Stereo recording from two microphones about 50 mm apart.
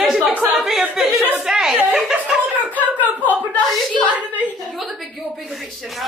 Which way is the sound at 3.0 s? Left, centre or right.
Left.